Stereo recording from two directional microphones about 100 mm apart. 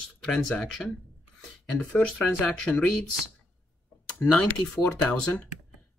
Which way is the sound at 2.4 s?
5° left (ahead or behind).